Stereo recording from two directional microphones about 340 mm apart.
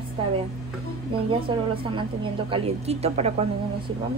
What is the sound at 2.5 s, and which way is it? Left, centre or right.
Speech, centre.